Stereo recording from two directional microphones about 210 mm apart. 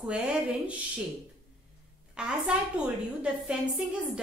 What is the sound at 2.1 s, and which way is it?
A woman's voice, 5° right (ahead or behind).